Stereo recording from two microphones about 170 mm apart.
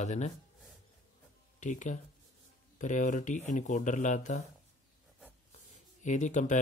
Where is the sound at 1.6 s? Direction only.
45° left (ahead or behind).